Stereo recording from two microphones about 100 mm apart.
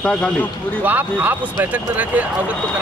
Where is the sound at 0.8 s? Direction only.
15° right (ahead or behind).